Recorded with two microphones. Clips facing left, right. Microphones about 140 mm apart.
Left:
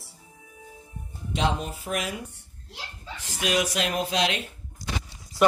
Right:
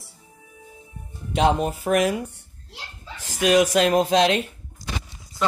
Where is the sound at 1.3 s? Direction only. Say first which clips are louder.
Right 7 dB; 55° right (ahead or behind).